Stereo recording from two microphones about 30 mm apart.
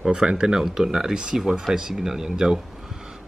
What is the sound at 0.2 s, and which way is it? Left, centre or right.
Speech, right.